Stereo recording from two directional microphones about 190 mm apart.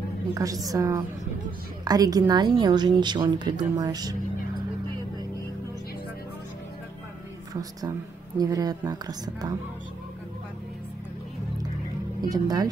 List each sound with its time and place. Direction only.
0.3 s a woman's voice: 20° right (ahead or behind)
8.4 s speech: 20° right (ahead or behind)
12.2 s speech: 20° right (ahead or behind)